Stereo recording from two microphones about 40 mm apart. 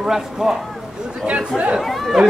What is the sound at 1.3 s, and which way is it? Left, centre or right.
Speech, right.